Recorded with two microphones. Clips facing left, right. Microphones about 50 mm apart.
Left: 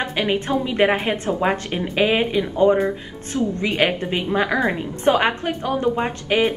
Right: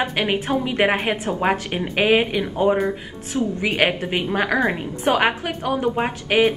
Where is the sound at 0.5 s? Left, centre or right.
Right.